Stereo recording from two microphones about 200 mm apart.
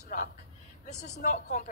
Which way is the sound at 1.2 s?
40° left (ahead or behind).